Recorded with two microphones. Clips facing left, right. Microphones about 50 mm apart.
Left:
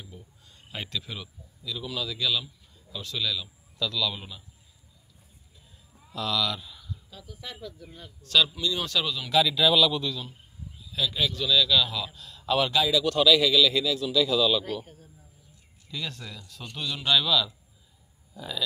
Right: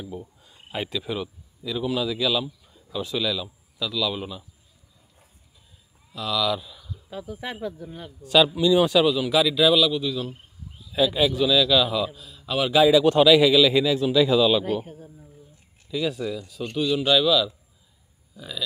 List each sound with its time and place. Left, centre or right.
0.0 s a sound: right
0.7 s a man's voice: centre
6.1 s a man's voice: centre
6.9 s speech: right
8.2 s a man's voice: centre
10.3 s a sound: right
10.9 s a man's voice: centre
12.7 s a man's voice: centre